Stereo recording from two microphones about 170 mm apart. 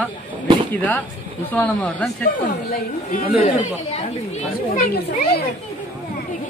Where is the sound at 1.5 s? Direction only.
10° left (ahead or behind).